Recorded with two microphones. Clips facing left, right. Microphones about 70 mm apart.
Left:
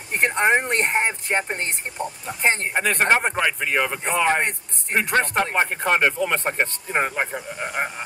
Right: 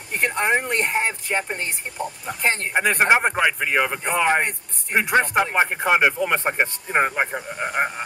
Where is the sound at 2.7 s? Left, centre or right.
Centre.